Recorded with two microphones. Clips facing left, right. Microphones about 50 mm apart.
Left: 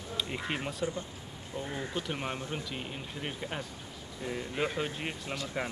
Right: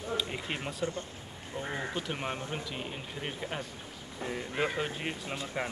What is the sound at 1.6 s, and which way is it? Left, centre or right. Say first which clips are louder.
Speech: right 1 dB; right.